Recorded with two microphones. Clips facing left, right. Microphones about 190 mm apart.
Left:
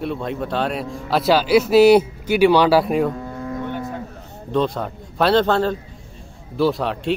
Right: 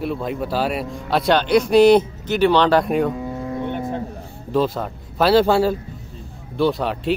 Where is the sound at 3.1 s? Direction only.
15° right (ahead or behind).